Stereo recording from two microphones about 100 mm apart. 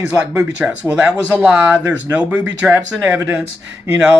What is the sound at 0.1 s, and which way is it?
Speech, 15° right (ahead or behind).